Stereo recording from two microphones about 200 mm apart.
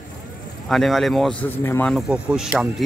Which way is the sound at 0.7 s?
Centre (ahead or behind).